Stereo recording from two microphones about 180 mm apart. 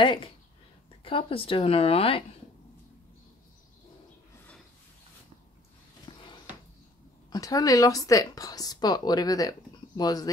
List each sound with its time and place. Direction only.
0.0 s speech: 25° left (ahead or behind)
6.0 s a sound: 25° left (ahead or behind)
7.2 s speech: 20° left (ahead or behind)